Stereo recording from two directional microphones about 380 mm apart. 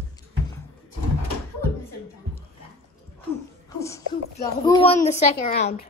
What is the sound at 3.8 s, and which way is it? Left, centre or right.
A woman's voice, centre.